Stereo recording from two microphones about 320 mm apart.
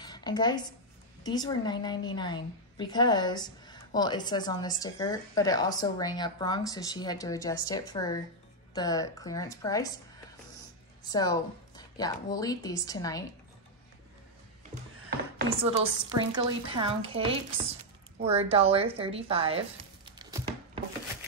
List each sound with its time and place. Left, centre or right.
0.0 s a woman's voice: centre
11.1 s a woman's voice: centre
15.6 s a woman's voice: centre
20.1 s crumpling: centre